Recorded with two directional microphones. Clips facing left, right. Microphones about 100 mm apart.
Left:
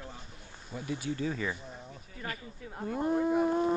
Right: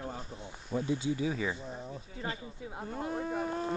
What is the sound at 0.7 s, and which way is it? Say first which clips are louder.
Speech: right 4 dB; 25° right (ahead or behind).